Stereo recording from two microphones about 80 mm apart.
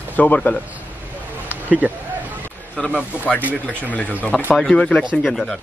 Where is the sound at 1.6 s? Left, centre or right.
Centre.